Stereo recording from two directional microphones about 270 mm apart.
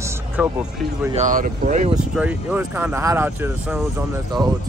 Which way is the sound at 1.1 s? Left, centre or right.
Right.